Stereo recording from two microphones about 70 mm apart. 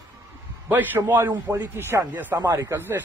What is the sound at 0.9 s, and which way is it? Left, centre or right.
A man's voice, right.